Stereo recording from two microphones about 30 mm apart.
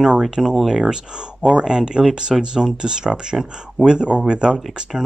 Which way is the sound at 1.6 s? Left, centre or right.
Right.